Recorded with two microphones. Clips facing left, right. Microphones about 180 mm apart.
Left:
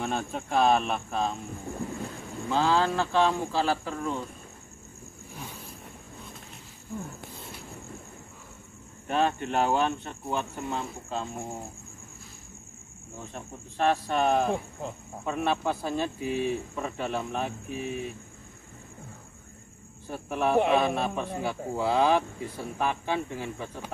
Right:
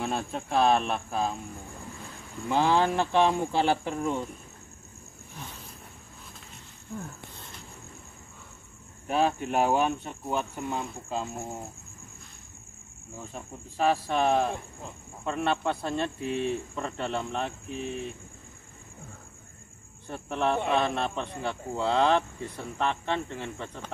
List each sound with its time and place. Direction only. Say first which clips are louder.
0.0 s a man's voice: even; centre (ahead or behind)
2.5 s speech: right 1 dB; 15° right (ahead or behind)
9.0 s a man's voice: even; 5° right (ahead or behind)
13.3 s a man's voice: even; 5° right (ahead or behind)
20.1 s a man's voice: left 1 dB; 5° left (ahead or behind)